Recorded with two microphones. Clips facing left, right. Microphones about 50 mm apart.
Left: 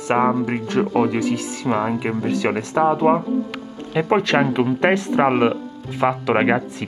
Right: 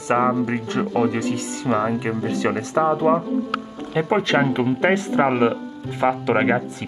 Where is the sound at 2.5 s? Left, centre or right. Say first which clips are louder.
Left 1 dB; left.